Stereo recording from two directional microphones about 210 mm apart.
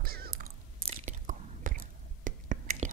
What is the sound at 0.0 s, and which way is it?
Chewing, 45° right (ahead or behind).